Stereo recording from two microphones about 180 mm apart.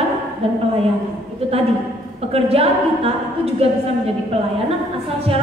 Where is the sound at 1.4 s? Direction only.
35° right (ahead or behind).